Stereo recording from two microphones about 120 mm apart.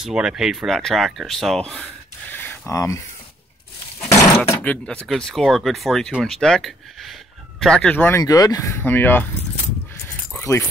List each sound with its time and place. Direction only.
0.0 s speech: 5° right (ahead or behind)
2.3 s a sound: 15° left (ahead or behind)
4.6 s speech: 10° left (ahead or behind)
8.2 s speech: 30° left (ahead or behind)
8.8 s speech: 15° left (ahead or behind)
10.3 s dog: 20° left (ahead or behind)